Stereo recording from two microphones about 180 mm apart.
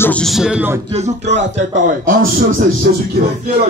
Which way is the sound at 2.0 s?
50° right (ahead or behind).